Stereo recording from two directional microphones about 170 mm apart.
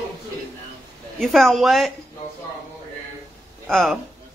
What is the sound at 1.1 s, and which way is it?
Speech, centre (ahead or behind).